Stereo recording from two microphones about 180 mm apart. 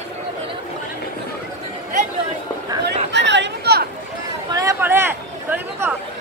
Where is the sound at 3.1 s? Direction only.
75° right (ahead or behind).